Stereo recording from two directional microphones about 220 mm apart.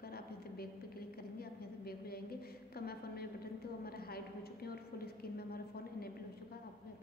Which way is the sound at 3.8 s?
45° left (ahead or behind).